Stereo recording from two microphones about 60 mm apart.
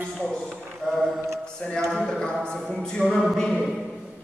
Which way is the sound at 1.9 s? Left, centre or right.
Centre.